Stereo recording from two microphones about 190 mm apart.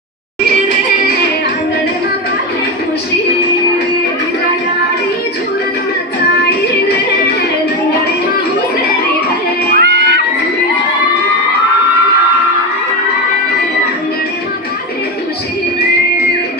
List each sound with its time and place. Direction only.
9.8 s children shouting: 60° right (ahead or behind)